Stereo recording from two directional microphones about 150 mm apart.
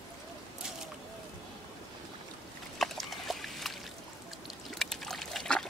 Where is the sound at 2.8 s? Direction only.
Centre (ahead or behind).